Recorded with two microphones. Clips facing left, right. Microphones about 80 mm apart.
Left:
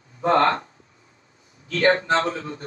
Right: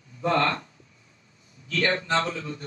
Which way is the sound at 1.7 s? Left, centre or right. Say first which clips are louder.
Left 6 dB; left.